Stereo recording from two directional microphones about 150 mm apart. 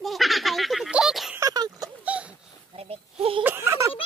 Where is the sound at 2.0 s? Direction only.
10° right (ahead or behind).